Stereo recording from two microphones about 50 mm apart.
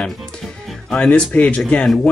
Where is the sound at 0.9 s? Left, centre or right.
Centre.